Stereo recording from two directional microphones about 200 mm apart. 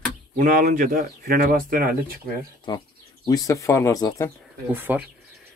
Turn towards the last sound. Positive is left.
turn(degrees=-10)  # may be behind; listen again after turning